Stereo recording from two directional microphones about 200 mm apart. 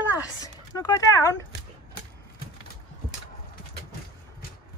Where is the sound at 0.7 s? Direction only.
15° left (ahead or behind).